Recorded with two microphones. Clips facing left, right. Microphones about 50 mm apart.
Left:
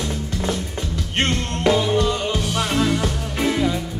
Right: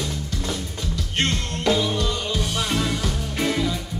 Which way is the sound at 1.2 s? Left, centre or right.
Left.